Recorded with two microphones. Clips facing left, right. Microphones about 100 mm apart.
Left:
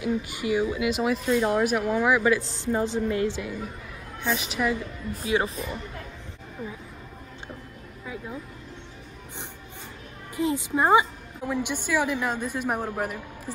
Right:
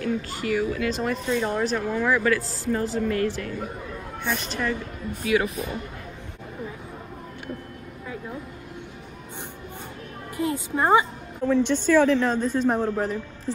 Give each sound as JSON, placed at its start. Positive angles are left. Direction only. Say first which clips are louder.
{"t": 0.0, "sound": "speech", "louder": "even", "side_deg": 15}
{"t": 0.8, "sound": "speech", "louder": "left 1 dB", "side_deg": 5}
{"t": 4.4, "sound": "speech", "louder": "left 1 dB", "side_deg": 5}
{"t": 5.1, "sound": "speech", "louder": "right 2 dB", "side_deg": 30}
{"t": 10.3, "sound": "a woman's voice", "louder": "left 1 dB", "side_deg": 20}